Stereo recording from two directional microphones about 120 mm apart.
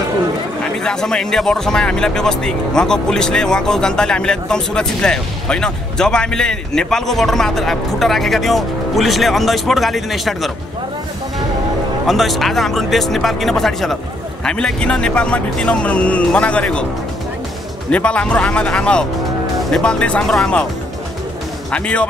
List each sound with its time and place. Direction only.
0.8 s speech: 5° left (ahead or behind)
12.1 s speech: centre (ahead or behind)
17.9 s speech: 10° left (ahead or behind)
21.7 s speech: 10° left (ahead or behind)